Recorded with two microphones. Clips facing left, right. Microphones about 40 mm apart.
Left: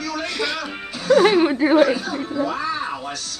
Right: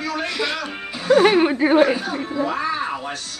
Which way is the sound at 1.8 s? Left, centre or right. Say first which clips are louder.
Even; right.